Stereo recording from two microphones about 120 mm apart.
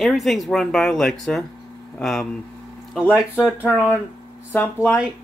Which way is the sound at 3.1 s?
10° right (ahead or behind).